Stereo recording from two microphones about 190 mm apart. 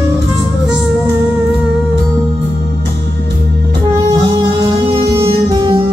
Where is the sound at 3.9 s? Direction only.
20° right (ahead or behind).